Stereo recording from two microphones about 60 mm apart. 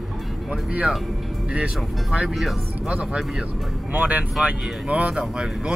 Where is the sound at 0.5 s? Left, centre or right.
Right.